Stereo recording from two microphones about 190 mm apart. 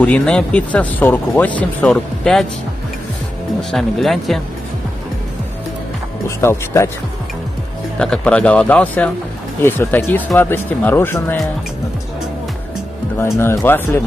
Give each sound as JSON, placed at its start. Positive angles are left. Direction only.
{"t": 0.0, "sound": "speech", "side_deg": 5}
{"t": 3.7, "sound": "speech", "side_deg": 0}
{"t": 6.2, "sound": "speech", "side_deg": 15}
{"t": 8.0, "sound": "speech", "side_deg": 5}
{"t": 13.2, "sound": "speech", "side_deg": 15}